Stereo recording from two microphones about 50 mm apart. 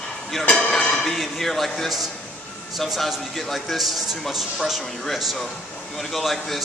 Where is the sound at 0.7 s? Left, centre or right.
Centre.